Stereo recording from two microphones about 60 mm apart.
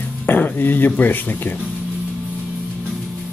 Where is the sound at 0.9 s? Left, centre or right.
Left.